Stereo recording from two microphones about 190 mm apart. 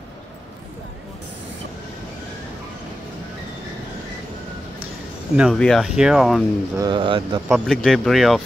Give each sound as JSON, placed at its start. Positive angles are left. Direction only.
{"t": 5.3, "sound": "speech", "side_deg": -5}
{"t": 6.8, "sound": "speech", "side_deg": -25}
{"t": 7.4, "sound": "speech", "side_deg": 0}